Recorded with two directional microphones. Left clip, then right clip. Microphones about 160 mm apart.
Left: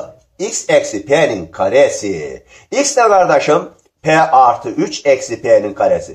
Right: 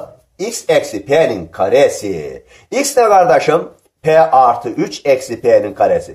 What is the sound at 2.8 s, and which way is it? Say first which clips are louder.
Speech: even; 40° right (ahead or behind).